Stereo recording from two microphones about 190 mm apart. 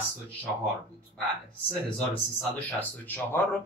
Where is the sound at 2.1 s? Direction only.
5° left (ahead or behind).